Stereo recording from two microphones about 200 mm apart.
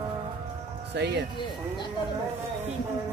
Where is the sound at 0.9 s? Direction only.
55° right (ahead or behind).